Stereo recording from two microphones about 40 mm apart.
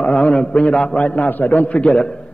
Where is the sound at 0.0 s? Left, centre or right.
Left.